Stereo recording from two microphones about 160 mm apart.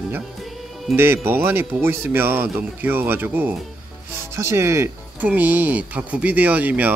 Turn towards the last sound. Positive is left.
turn(degrees=-10)  # may be behind; listen again after turning